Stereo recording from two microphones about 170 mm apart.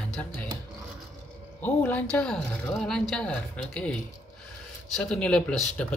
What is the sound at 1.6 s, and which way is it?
Speech, 10° left (ahead or behind).